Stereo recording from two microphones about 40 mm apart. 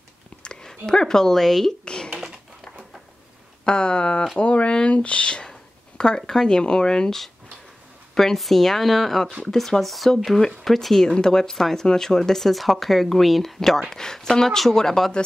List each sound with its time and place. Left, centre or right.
0.4 s speech: centre
3.6 s speech: left